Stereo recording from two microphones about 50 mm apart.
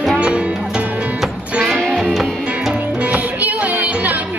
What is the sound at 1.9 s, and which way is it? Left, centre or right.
Music, centre.